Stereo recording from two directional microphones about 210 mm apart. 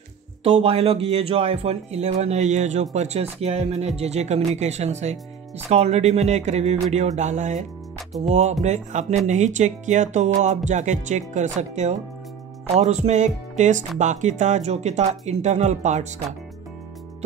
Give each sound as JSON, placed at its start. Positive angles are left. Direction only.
{"t": 0.4, "sound": "speech", "side_deg": -30}